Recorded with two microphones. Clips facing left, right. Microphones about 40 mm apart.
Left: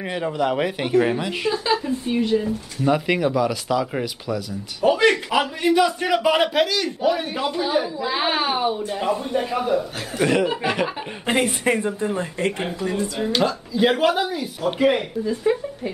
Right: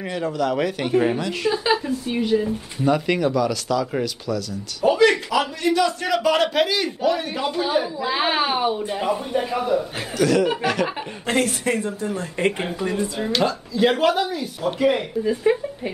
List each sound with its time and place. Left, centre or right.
0.0 s speech: centre
1.5 s a woman's voice: centre
2.9 s a woman's voice: centre
10.1 s speech: left
12.7 s speech: centre
13.2 s a woman's voice: centre
15.5 s speech: centre